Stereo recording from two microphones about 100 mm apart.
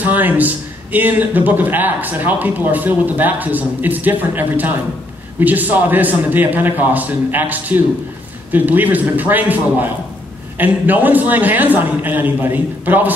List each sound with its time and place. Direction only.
0.0 s a man's voice: 15° right (ahead or behind)